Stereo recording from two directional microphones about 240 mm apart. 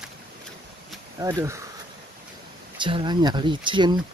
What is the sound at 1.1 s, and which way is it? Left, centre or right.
Speech, centre.